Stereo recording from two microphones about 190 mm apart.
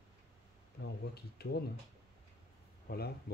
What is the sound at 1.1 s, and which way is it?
Speech, 55° left (ahead or behind).